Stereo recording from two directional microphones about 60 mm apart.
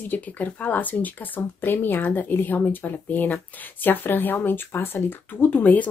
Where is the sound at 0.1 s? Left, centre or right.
Left.